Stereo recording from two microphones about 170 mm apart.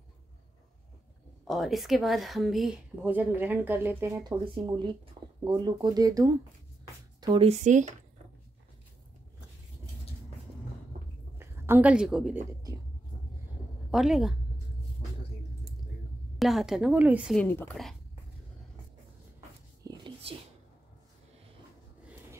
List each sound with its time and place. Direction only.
1.4 s speech: centre (ahead or behind)
3.0 s speech: 10° right (ahead or behind)
7.2 s a sound: 25° right (ahead or behind)
7.4 s speech: 45° right (ahead or behind)
11.3 s a woman's voice: 10° right (ahead or behind)
13.8 s a woman's voice: centre (ahead or behind)
16.3 s speech: centre (ahead or behind)
17.4 s a woman's voice: 10° left (ahead or behind)
19.8 s whispering: 30° right (ahead or behind)